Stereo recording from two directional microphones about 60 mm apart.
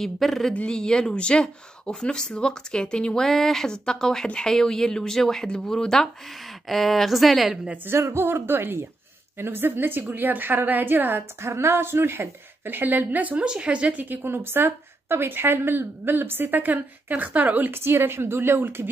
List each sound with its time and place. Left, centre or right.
0.0 s a woman's voice: centre
0.6 s speech: centre
3.3 s a woman's voice: centre
7.7 s a woman's voice: right
8.0 s a woman's voice: right
14.0 s a woman's voice: right